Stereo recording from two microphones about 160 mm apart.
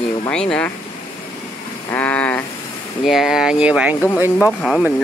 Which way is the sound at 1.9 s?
10° left (ahead or behind).